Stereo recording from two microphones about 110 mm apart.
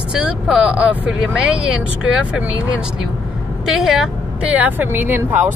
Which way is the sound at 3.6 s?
5° right (ahead or behind).